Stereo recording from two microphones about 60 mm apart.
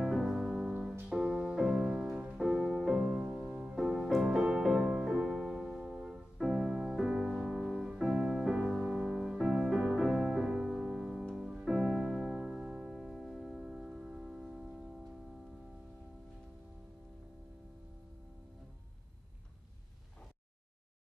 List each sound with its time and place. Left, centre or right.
0.0 s music: centre
3.2 s music: centre
3.4 s music: centre